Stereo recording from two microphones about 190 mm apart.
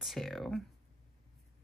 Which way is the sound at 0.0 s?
Centre (ahead or behind).